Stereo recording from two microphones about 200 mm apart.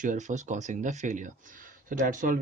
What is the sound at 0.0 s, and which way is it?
Speech, 40° right (ahead or behind).